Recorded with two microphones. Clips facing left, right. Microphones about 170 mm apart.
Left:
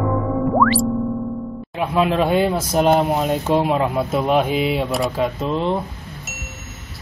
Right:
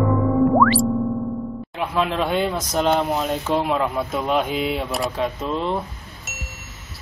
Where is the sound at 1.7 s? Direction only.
5° left (ahead or behind).